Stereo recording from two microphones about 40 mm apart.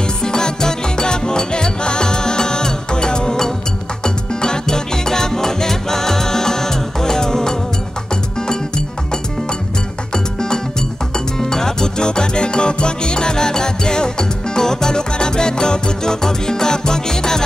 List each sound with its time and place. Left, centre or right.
0.0 s music: centre